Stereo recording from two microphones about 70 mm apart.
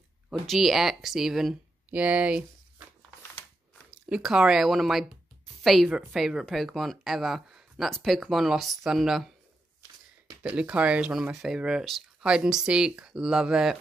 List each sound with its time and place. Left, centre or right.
0.3 s speech: centre
1.9 s speech: centre
3.2 s a sound: left
4.1 s speech: centre
10.4 s speech: centre